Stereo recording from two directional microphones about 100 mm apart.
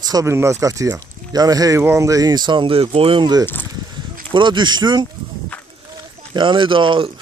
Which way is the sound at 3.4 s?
20° left (ahead or behind).